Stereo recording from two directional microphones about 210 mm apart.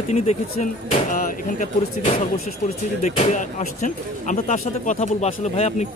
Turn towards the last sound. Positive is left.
turn(degrees=30)  # may be behind; listen again after turning